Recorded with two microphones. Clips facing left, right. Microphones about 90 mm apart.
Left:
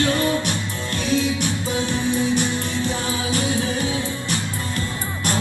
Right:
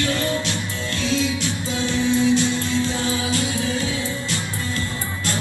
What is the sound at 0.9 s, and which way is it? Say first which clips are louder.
Music: left 2 dB; 55° left (ahead or behind).